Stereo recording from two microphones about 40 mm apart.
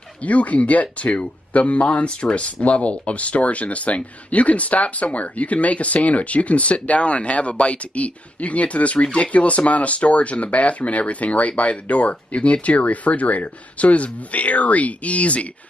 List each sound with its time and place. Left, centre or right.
0.2 s speech: left